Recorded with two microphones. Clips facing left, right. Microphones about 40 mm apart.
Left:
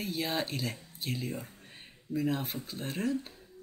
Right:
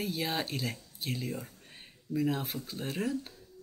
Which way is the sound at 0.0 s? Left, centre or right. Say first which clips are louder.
Even; centre.